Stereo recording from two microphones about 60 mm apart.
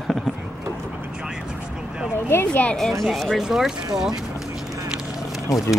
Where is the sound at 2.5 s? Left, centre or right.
Left.